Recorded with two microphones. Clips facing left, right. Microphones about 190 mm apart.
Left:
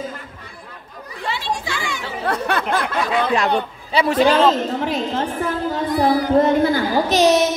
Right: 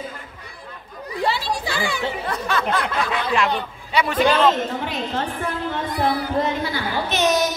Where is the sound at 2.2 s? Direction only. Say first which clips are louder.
Left 7 dB; 60° left (ahead or behind).